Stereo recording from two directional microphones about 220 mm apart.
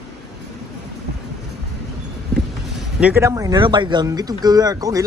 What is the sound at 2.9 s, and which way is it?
Speech, 10° right (ahead or behind).